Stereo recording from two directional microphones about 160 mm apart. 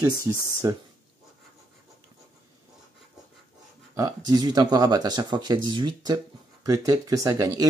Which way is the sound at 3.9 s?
25° right (ahead or behind).